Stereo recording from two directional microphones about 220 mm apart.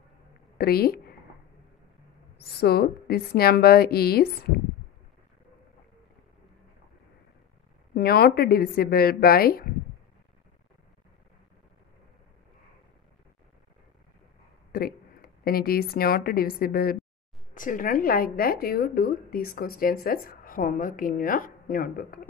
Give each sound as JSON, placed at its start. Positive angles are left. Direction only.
{"t": 0.6, "sound": "speech", "side_deg": 45}
{"t": 2.6, "sound": "a woman's voice", "side_deg": 45}
{"t": 7.9, "sound": "a woman's voice", "side_deg": 45}
{"t": 14.7, "sound": "a woman's voice", "side_deg": 45}